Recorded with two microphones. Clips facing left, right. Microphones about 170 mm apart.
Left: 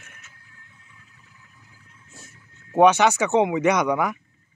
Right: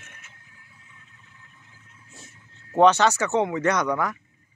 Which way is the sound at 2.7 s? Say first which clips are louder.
Left 1 dB; 10° left (ahead or behind).